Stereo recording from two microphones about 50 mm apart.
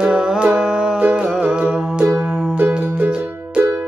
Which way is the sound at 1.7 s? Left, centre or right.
Centre.